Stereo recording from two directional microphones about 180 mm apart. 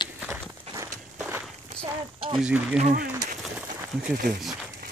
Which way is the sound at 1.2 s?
10° right (ahead or behind).